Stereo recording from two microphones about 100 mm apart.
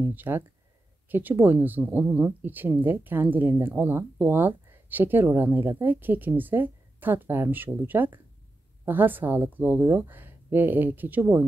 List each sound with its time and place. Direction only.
0.0 s speech: 20° right (ahead or behind)